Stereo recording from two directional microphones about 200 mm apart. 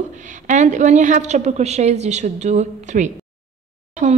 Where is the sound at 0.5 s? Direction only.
35° right (ahead or behind).